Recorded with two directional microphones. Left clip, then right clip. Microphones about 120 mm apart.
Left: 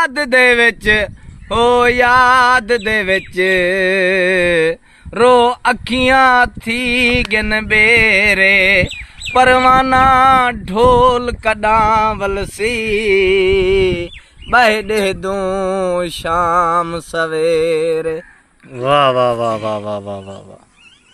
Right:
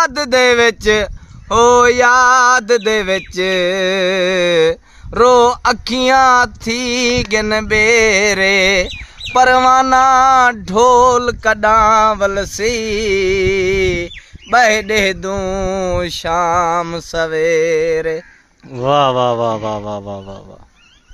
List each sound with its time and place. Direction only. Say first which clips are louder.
0.0 s speech: left 1 dB; 25° right (ahead or behind)
9.9 s speech: even; 20° right (ahead or behind)
15.0 s music: even; 25° right (ahead or behind)
18.8 s music: left 1 dB; 40° right (ahead or behind); by 20.4 s 20° right (ahead or behind)